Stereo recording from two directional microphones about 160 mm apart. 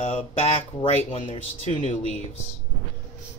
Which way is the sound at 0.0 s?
40° left (ahead or behind).